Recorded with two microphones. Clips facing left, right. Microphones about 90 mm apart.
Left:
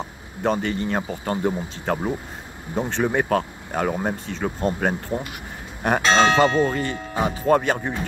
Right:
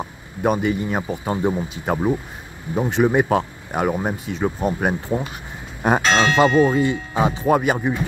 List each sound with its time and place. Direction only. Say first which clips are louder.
0.0 s speech: right 3 dB; 10° right (ahead or behind)